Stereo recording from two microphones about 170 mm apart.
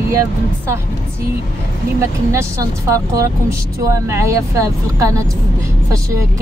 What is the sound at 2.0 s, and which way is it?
Speech, 15° right (ahead or behind).